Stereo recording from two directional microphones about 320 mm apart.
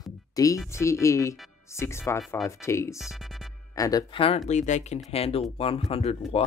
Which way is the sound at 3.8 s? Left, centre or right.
Centre.